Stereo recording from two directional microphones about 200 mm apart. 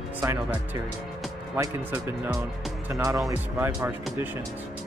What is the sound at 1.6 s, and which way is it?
Speech, 10° right (ahead or behind).